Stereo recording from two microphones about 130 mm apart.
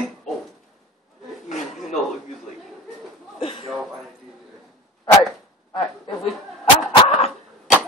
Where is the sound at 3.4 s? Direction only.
50° left (ahead or behind).